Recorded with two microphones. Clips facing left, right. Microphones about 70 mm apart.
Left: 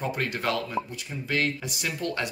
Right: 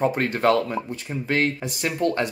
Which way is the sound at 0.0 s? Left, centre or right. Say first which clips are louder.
Right 8 dB; right.